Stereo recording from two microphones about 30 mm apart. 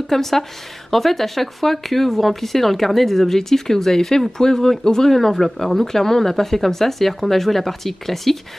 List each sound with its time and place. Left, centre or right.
0.1 s speech: centre
5.1 s speech: centre